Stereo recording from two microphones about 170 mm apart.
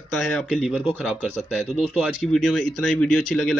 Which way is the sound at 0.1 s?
Centre (ahead or behind).